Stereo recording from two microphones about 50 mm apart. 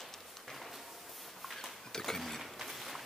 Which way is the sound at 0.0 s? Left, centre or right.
Centre.